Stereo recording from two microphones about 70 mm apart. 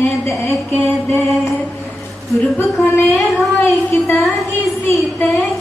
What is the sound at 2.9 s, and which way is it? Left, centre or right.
Speech, left.